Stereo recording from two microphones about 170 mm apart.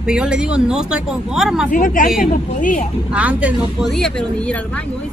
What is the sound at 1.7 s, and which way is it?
A woman's voice, 50° left (ahead or behind).